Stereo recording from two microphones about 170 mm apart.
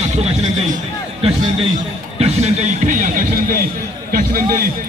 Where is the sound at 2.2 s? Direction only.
40° right (ahead or behind).